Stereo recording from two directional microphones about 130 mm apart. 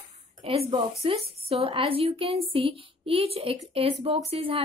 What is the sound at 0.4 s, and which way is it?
A woman's voice, 45° right (ahead or behind).